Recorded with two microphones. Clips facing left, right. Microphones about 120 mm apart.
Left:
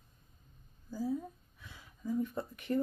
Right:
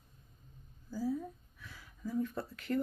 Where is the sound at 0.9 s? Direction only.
20° left (ahead or behind).